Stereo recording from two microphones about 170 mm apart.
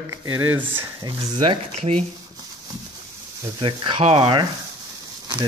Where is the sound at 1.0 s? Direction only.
30° right (ahead or behind).